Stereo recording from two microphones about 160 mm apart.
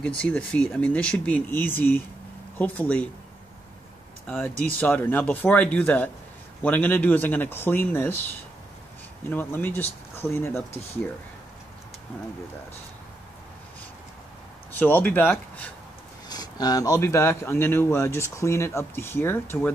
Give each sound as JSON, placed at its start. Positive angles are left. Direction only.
{"t": 0.0, "sound": "a man's voice", "side_deg": 5}
{"t": 4.3, "sound": "a man's voice", "side_deg": 10}
{"t": 9.3, "sound": "a man's voice", "side_deg": 15}
{"t": 14.7, "sound": "a man's voice", "side_deg": 10}
{"t": 16.3, "sound": "a man's voice", "side_deg": 25}